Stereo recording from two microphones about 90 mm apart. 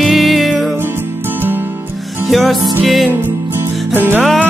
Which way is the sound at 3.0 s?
25° right (ahead or behind).